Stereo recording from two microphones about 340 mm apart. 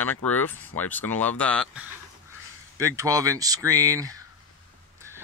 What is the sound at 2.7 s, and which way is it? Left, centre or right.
Speech, centre.